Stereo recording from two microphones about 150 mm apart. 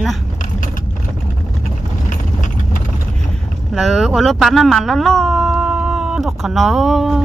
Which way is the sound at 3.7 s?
Centre (ahead or behind).